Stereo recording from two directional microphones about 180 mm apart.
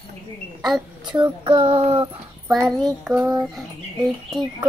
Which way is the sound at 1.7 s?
35° right (ahead or behind).